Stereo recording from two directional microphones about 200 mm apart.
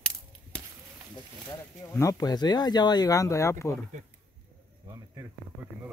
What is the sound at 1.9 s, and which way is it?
Speech, 15° left (ahead or behind).